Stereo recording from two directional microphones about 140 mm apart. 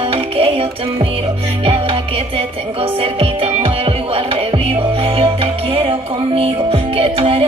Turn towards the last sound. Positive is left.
turn(degrees=-45)  # may be behind; listen again after turning